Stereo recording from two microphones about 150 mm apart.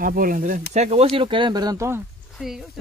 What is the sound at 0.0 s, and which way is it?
Speech, 70° right (ahead or behind).